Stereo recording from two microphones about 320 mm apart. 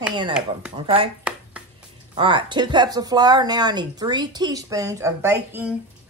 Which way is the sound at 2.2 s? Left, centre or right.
Centre.